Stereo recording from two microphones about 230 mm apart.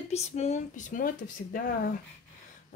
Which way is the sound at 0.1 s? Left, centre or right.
Left.